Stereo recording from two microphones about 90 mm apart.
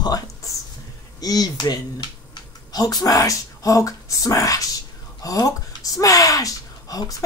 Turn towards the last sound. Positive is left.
turn(degrees=40)  # may be behind; listen again after turning